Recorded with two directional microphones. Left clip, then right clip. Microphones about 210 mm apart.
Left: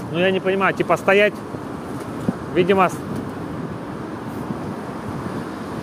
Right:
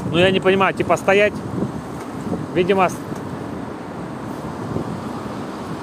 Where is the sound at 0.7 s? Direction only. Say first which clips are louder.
Even; centre (ahead or behind).